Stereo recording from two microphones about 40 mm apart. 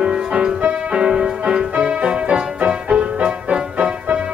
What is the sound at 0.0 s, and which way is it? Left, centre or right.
Music, right.